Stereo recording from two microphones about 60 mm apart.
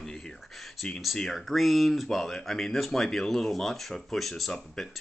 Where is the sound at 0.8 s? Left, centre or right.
Centre.